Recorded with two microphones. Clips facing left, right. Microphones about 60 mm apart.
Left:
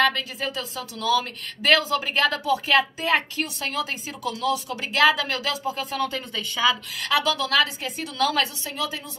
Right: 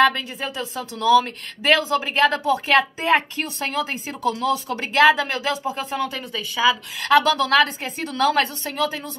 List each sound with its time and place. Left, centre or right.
0.0 s a woman's voice: right
2.3 s a woman's voice: right
6.0 s speech: centre
7.0 s a woman's voice: right